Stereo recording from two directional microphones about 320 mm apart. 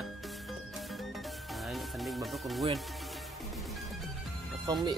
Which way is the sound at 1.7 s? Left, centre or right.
Centre.